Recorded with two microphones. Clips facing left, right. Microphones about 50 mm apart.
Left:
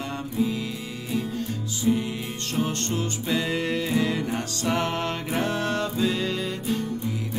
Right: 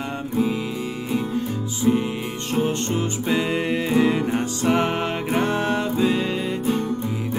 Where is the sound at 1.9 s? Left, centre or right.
Right.